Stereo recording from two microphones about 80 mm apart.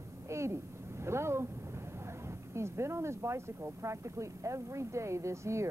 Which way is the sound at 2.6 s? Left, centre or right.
Right.